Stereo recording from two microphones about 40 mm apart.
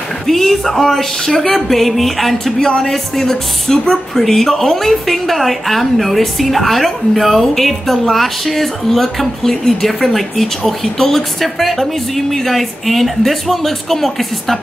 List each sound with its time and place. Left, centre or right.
0.3 s a woman's voice: centre